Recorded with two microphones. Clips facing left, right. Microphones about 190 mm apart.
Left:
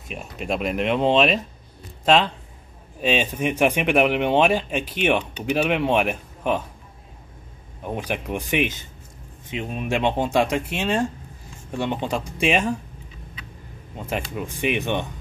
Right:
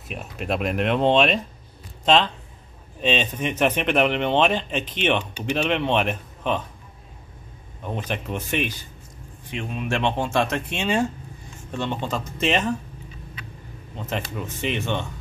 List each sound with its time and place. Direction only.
0.1 s speech: centre (ahead or behind)
7.8 s speech: 10° left (ahead or behind)
11.7 s speech: 15° left (ahead or behind)
13.9 s speech: 10° left (ahead or behind)